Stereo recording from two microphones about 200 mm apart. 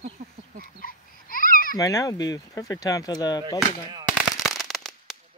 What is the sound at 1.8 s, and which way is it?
Speech, 15° left (ahead or behind).